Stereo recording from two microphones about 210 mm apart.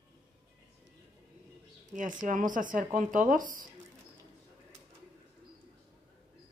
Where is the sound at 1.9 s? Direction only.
40° right (ahead or behind).